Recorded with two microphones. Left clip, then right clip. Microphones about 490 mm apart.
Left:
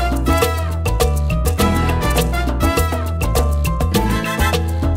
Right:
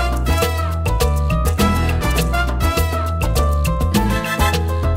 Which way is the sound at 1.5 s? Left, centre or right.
Left.